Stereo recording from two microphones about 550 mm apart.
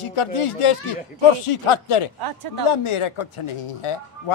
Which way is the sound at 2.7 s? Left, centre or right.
Left.